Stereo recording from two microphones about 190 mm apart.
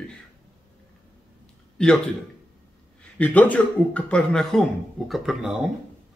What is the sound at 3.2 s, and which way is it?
Speech, 5° left (ahead or behind).